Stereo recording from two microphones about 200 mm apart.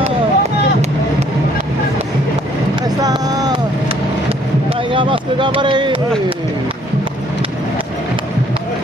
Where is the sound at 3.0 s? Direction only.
20° right (ahead or behind).